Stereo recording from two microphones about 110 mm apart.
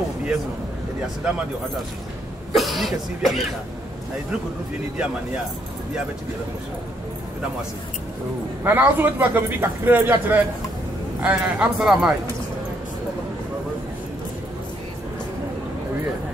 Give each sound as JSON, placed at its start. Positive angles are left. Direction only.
{"t": 2.5, "sound": "speech", "side_deg": 0}
{"t": 4.9, "sound": "a man's voice", "side_deg": -5}
{"t": 8.6, "sound": "a man's voice", "side_deg": -20}